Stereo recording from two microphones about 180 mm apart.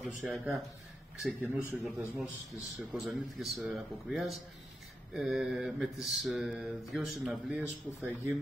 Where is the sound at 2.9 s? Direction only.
Centre (ahead or behind).